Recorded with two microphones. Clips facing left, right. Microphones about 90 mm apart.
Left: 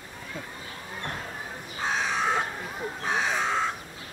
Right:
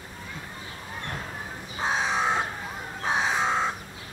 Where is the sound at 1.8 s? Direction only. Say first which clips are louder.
Right 2 dB; 20° right (ahead or behind).